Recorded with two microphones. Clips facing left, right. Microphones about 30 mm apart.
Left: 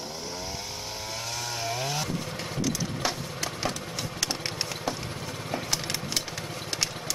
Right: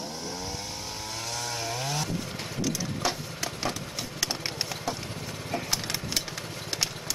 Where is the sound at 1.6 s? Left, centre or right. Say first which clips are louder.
Left 2 dB; centre.